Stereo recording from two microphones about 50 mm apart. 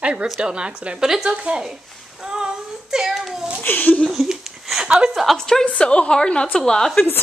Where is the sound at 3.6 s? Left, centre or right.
Left.